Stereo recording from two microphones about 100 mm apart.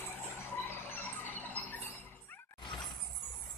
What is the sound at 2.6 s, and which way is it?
Shatter, 55° left (ahead or behind).